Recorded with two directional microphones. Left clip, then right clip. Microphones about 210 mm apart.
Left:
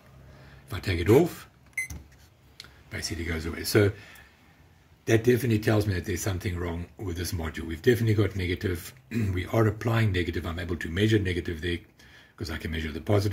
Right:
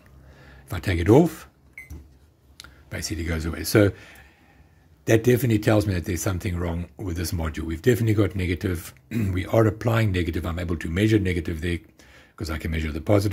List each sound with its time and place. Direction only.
0.7 s speech: 40° right (ahead or behind)
2.5 s speech: 45° right (ahead or behind)